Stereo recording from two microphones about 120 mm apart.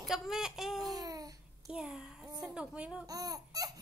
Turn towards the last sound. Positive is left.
turn(degrees=-30)  # may be behind; listen again after turning